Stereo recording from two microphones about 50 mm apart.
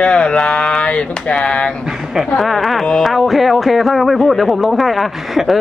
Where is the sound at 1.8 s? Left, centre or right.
Centre.